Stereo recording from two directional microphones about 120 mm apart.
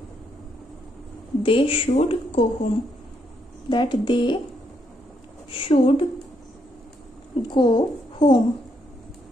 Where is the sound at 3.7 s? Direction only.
40° left (ahead or behind).